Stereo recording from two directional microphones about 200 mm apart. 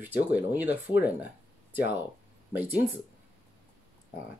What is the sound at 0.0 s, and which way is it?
Speech, 10° right (ahead or behind).